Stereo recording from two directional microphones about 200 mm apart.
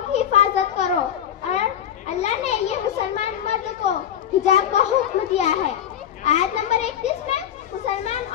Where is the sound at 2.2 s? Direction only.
35° left (ahead or behind).